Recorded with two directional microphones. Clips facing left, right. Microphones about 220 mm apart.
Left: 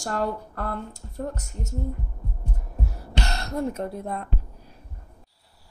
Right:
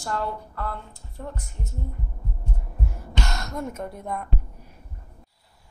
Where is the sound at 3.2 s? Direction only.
35° left (ahead or behind).